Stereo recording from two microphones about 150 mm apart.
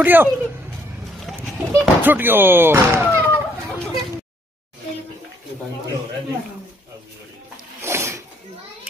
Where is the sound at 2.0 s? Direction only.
10° right (ahead or behind).